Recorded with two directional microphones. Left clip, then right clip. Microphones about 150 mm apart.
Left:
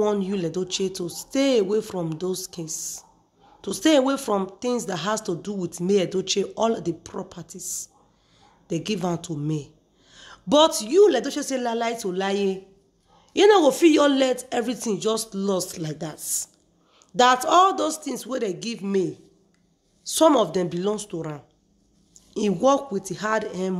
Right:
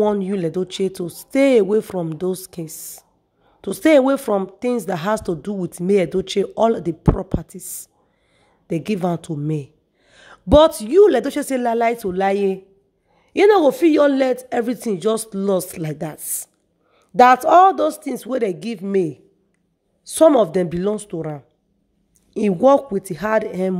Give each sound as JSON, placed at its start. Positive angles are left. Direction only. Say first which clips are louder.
{"t": 0.2, "sound": "speech", "louder": "right 5 dB", "side_deg": -45}